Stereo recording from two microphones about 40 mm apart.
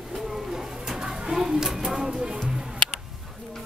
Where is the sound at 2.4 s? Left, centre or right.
Centre.